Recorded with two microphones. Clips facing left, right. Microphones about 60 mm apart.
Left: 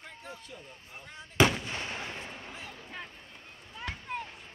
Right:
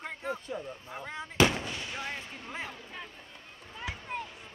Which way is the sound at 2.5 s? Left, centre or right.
Right.